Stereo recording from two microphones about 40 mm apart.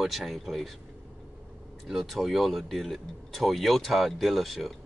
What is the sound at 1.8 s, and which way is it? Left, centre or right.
Speech, centre.